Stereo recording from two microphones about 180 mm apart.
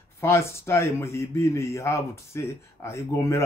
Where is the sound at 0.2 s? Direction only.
15° left (ahead or behind).